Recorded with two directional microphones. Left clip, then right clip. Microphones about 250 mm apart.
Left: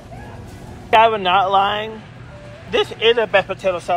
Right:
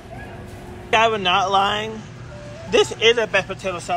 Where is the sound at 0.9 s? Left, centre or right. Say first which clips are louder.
Left 4 dB; centre.